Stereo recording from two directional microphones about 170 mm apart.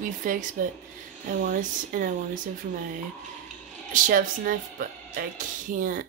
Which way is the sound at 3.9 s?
55° right (ahead or behind).